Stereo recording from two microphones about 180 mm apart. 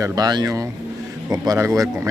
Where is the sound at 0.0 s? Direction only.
20° right (ahead or behind).